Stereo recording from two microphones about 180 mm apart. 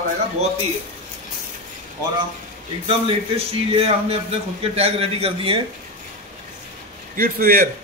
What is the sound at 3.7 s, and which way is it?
A man's voice, 35° right (ahead or behind).